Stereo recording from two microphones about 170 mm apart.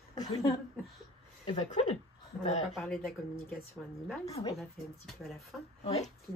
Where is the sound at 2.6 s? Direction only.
Centre (ahead or behind).